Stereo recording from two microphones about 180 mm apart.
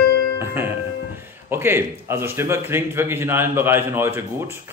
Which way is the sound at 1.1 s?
15° right (ahead or behind).